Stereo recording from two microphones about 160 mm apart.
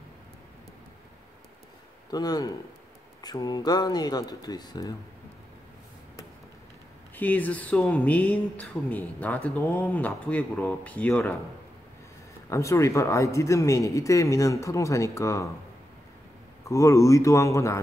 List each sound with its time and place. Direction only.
2.0 s speech: 25° left (ahead or behind)
7.2 s speech: 10° left (ahead or behind)
12.4 s speech: 20° left (ahead or behind)
16.6 s speech: 20° left (ahead or behind)